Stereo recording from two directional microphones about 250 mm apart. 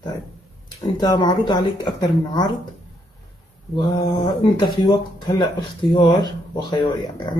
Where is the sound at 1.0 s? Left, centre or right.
Centre.